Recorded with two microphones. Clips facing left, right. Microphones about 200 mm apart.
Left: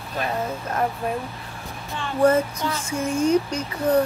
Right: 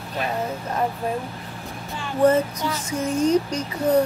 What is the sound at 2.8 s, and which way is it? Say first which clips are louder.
Speech: right 1 dB; 40° right (ahead or behind).